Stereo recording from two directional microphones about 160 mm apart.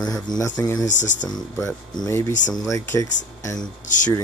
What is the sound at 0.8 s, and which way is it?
Speech, 50° left (ahead or behind).